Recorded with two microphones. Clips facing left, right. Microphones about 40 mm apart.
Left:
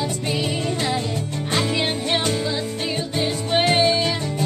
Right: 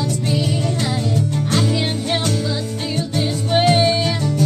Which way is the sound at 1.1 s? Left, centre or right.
Centre.